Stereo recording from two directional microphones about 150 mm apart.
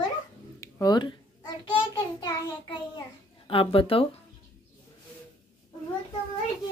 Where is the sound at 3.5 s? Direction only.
40° left (ahead or behind).